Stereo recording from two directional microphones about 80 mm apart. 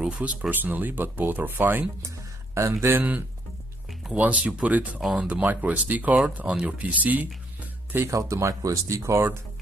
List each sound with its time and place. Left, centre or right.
0.0 s speech: centre
2.0 s music: right
2.8 s speech: right
8.1 s speech: right